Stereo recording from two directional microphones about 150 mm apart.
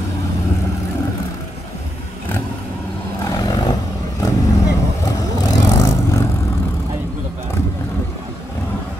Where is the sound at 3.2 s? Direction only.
25° left (ahead or behind).